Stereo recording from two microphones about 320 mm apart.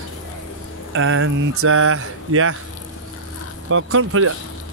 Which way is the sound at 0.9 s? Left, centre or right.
Right.